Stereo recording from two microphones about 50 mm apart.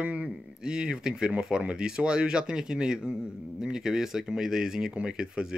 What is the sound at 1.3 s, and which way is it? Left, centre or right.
Speech, right.